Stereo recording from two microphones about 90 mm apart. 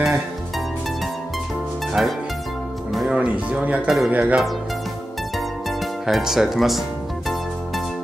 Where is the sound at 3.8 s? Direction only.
Centre (ahead or behind).